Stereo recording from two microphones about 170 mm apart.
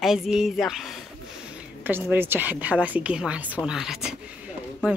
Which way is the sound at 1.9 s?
10° right (ahead or behind).